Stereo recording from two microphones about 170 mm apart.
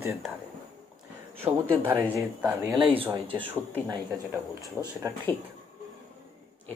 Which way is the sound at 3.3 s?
10° right (ahead or behind).